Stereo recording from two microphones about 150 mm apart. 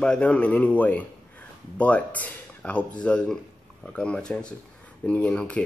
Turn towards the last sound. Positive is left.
turn(degrees=5)  # may be behind; listen again after turning